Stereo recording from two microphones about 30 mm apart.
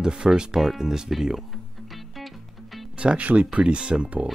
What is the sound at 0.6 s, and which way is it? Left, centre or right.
Speech, centre.